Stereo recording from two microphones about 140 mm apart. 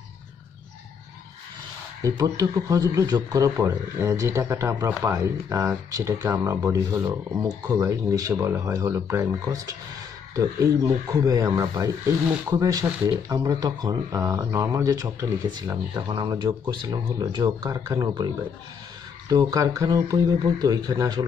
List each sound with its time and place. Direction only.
2.0 s speech: 25° right (ahead or behind)